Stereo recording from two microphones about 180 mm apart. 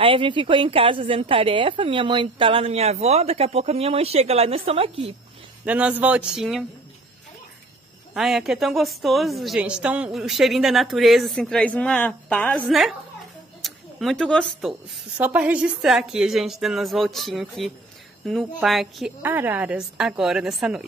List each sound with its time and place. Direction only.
0.0 s a woman's voice: 30° right (ahead or behind)
5.7 s speech: 10° right (ahead or behind)
8.1 s a woman's voice: centre (ahead or behind)